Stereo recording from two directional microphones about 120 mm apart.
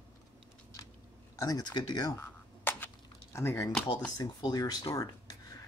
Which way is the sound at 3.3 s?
20° left (ahead or behind).